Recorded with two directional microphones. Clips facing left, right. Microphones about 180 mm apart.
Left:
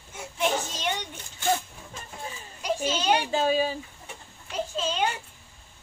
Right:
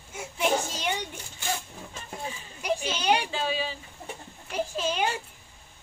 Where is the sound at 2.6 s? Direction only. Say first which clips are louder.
Left 1 dB; 10° right (ahead or behind).